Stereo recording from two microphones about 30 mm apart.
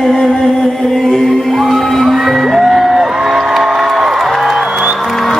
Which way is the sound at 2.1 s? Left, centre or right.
Centre.